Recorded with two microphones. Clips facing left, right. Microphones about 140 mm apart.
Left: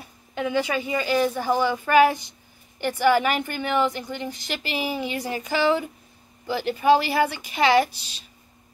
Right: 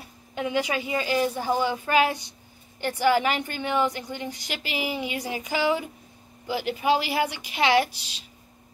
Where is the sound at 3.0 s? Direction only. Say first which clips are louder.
Left 2 dB; 15° right (ahead or behind).